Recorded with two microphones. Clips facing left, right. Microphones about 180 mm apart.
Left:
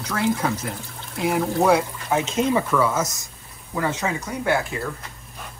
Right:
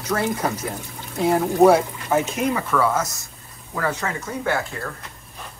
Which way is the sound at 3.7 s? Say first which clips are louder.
Left 1 dB; 15° left (ahead or behind).